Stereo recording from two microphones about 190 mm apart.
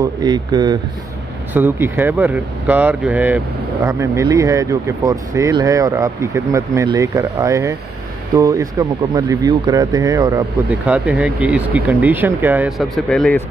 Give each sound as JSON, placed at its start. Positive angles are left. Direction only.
{"t": 0.0, "sound": "speech", "side_deg": -20}
{"t": 1.5, "sound": "speech", "side_deg": -10}
{"t": 10.7, "sound": "speech", "side_deg": -5}